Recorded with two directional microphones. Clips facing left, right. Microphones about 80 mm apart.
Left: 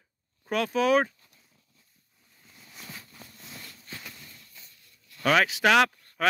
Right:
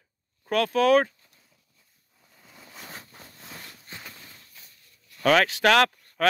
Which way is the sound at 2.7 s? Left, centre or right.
Right.